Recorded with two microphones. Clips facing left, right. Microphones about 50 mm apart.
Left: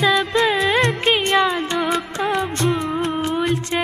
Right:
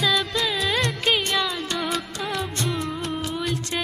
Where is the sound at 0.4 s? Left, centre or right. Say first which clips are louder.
Left 7 dB; left.